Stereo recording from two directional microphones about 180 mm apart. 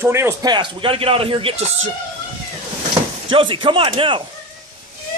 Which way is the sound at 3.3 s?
30° right (ahead or behind).